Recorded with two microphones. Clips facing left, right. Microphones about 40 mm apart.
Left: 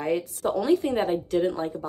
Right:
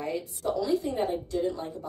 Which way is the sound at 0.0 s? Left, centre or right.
Left.